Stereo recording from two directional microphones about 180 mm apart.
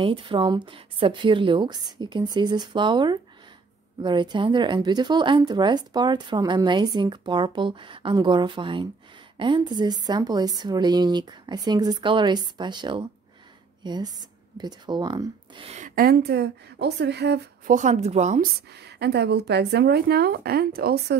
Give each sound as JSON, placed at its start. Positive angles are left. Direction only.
{"t": 0.0, "sound": "speech", "side_deg": -30}
{"t": 15.7, "sound": "speech", "side_deg": -50}
{"t": 17.6, "sound": "speech", "side_deg": -45}
{"t": 18.7, "sound": "speech", "side_deg": -70}